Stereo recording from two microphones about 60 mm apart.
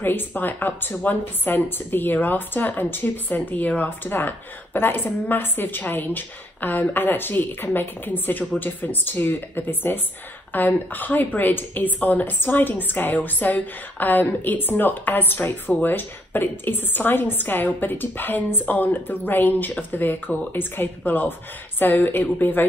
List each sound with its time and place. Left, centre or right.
0.0 s a woman's voice: left